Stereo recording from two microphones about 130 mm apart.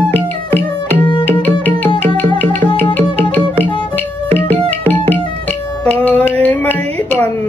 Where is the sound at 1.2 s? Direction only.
15° left (ahead or behind).